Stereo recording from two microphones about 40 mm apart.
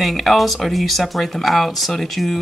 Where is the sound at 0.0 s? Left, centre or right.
Centre.